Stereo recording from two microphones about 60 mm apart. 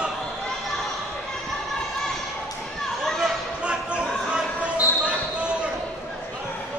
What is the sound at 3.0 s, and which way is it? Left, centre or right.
Chatter, centre.